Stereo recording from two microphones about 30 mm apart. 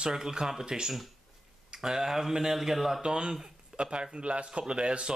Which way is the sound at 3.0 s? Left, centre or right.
Right.